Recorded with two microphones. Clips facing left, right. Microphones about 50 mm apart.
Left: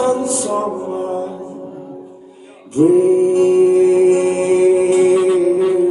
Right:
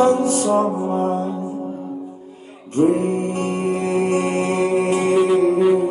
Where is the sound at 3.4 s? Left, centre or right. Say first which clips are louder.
Left 11 dB; right.